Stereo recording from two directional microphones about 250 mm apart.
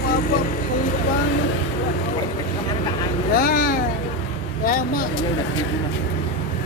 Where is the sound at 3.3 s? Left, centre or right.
Left.